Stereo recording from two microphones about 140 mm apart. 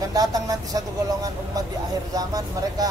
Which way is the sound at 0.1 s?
25° right (ahead or behind).